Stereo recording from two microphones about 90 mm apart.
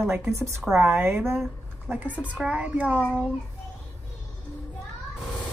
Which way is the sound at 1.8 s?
20° right (ahead or behind).